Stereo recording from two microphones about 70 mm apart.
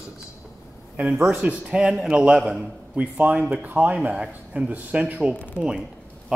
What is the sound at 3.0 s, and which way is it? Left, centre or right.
A man's voice, right.